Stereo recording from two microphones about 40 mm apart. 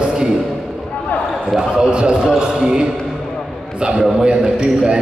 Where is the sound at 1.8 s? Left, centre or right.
Right.